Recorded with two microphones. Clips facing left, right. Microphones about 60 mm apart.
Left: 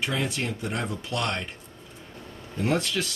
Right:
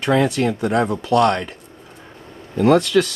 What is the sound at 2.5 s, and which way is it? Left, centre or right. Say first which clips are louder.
Speech: right 12 dB; right.